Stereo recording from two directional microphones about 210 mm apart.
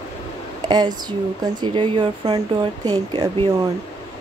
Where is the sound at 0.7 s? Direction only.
20° right (ahead or behind).